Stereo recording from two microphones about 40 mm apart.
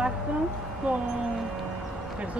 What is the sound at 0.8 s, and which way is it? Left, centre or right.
Speech, right.